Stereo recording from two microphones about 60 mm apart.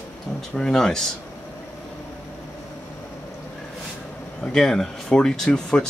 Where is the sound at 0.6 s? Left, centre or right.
Centre.